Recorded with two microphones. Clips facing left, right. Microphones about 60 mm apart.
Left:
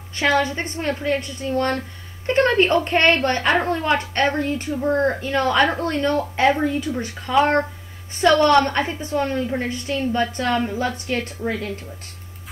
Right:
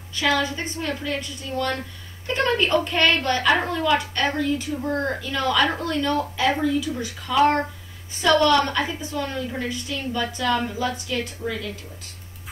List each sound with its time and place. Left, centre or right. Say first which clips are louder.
0.1 s a woman's voice: left 3 dB; left